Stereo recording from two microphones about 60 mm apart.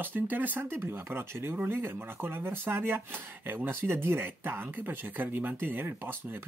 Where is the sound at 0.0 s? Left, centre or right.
Right.